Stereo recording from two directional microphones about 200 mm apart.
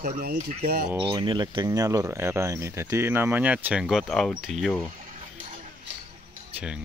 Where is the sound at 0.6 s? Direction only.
50° right (ahead or behind).